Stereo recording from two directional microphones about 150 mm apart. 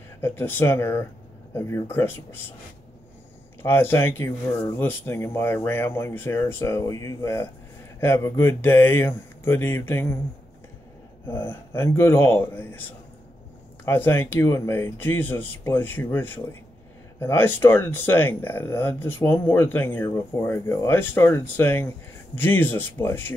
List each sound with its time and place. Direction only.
0.2 s speech: 15° left (ahead or behind)
3.6 s speech: 15° left (ahead or behind)
11.2 s speech: 15° left (ahead or behind)